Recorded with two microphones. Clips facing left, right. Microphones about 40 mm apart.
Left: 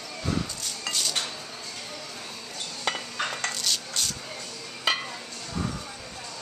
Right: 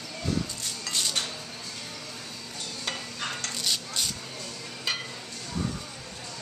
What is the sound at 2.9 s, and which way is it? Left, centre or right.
Dishes, left.